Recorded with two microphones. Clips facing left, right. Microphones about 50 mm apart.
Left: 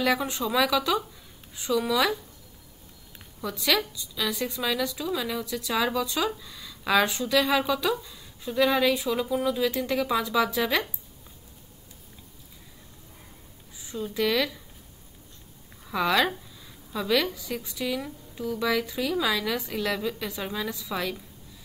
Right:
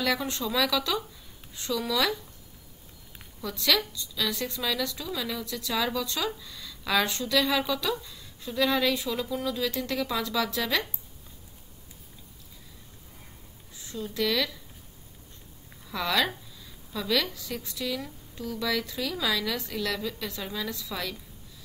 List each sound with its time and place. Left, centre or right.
0.0 s a woman's voice: centre
3.4 s a woman's voice: centre
13.7 s speech: centre
15.8 s a woman's voice: centre